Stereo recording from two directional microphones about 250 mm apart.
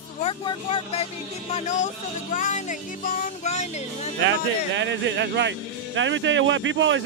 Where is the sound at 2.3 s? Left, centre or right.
Left.